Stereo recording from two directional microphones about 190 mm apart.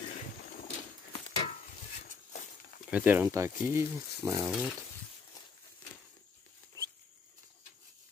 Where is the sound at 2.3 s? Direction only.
40° left (ahead or behind).